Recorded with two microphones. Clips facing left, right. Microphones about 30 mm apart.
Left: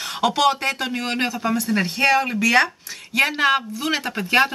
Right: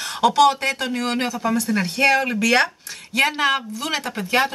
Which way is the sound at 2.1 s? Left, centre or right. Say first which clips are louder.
Left 1 dB; centre.